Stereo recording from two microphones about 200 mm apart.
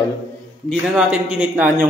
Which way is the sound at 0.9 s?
5° right (ahead or behind).